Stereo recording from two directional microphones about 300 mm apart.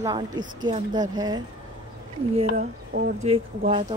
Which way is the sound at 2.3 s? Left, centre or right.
Right.